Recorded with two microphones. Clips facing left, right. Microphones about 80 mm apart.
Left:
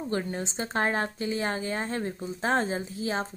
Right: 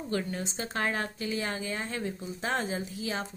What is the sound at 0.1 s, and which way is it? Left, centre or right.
A woman's voice, left.